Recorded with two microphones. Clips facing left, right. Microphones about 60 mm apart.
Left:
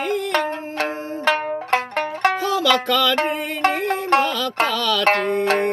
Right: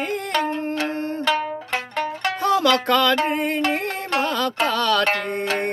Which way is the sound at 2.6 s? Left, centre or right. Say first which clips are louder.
Left 2 dB; right.